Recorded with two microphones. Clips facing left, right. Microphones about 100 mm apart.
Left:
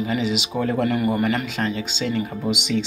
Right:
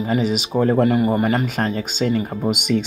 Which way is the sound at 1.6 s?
40° right (ahead or behind).